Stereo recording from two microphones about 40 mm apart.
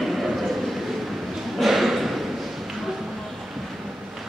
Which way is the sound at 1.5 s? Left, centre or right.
Centre.